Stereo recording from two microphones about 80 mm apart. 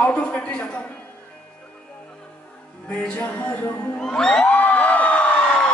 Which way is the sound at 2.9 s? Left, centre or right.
Centre.